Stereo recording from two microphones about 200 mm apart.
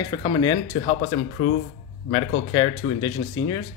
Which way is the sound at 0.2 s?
25° left (ahead or behind).